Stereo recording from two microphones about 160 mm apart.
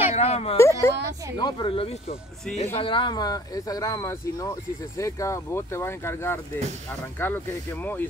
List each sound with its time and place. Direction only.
0.1 s speech: 40° left (ahead or behind)
0.6 s speech: 15° left (ahead or behind)
1.4 s speech: 35° left (ahead or behind); by 8.0 s 10° left (ahead or behind)